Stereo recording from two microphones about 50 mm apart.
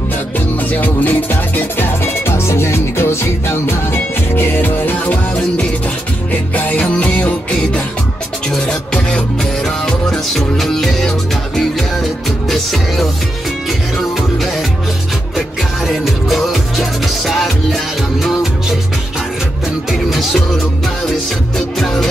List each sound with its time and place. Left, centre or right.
0.7 s music: left
2.2 s music: left
4.6 s music: left
6.5 s music: left
8.6 s music: centre
15.9 s music: centre
20.1 s music: centre
21.5 s music: centre